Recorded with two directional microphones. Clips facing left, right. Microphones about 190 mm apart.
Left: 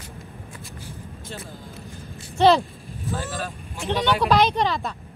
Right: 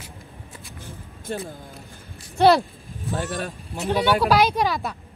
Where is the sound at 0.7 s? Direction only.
55° right (ahead or behind).